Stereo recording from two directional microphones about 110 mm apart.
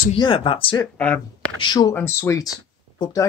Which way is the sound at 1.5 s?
45° left (ahead or behind).